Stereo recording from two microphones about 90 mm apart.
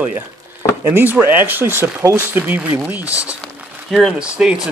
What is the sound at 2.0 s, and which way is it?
Speech, 30° right (ahead or behind).